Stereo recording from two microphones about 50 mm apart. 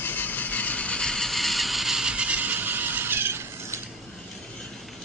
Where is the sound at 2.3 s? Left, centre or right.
Right.